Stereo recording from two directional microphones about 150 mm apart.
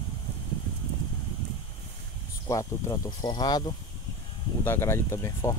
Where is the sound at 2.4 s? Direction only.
20° left (ahead or behind).